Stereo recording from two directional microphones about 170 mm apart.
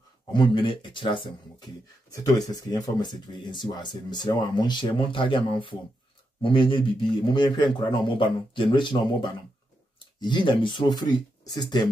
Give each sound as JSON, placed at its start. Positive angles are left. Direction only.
{"t": 0.3, "sound": "speech", "side_deg": 30}